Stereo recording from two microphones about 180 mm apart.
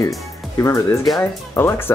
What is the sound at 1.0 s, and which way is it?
Speech, centre (ahead or behind).